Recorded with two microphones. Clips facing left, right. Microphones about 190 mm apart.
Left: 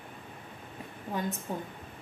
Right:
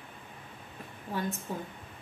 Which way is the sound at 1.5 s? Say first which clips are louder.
Left 1 dB; 20° left (ahead or behind).